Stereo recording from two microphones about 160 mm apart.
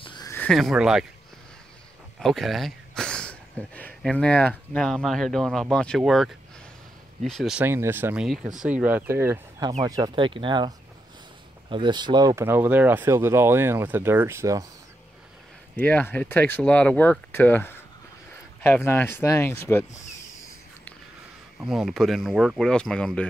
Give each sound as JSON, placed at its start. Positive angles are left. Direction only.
{"t": 0.0, "sound": "a sound", "side_deg": 30}
{"t": 0.5, "sound": "speech", "side_deg": 0}
{"t": 2.1, "sound": "speech", "side_deg": 0}
{"t": 7.6, "sound": "speech", "side_deg": -15}
{"t": 11.7, "sound": "speech", "side_deg": -30}
{"t": 15.7, "sound": "speech", "side_deg": 10}
{"t": 21.5, "sound": "speech", "side_deg": -5}